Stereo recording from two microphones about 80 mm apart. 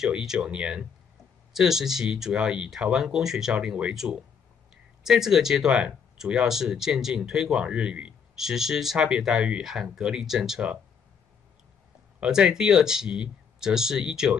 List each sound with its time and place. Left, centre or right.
0.0 s speech: centre
12.2 s speech: centre